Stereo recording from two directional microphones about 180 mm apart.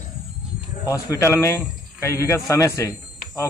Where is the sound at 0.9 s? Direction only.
15° left (ahead or behind).